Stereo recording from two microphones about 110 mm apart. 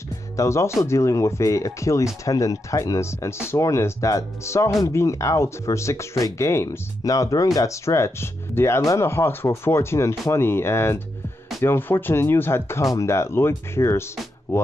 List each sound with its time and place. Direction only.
0.4 s speech: 25° left (ahead or behind)